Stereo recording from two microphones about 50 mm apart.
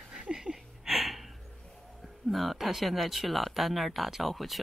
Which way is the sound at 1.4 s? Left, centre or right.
Centre.